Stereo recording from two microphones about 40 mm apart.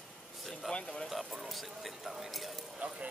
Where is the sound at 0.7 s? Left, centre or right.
Centre.